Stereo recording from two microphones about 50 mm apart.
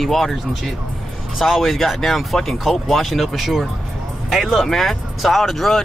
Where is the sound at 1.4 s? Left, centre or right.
Centre.